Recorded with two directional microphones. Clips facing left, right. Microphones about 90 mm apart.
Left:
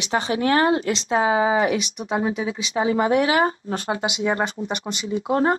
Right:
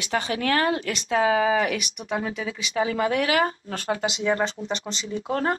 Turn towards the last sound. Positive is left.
turn(degrees=25)  # may be behind; listen again after turning